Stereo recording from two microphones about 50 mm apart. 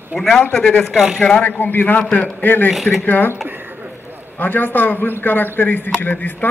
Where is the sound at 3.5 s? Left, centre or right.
Right.